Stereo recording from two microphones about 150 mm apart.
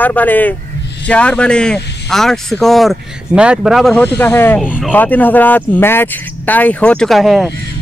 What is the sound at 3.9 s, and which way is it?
Speech, 10° left (ahead or behind).